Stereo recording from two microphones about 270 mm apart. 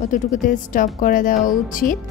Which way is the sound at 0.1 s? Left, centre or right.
Left.